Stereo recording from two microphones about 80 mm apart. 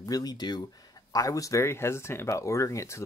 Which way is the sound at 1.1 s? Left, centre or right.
Left.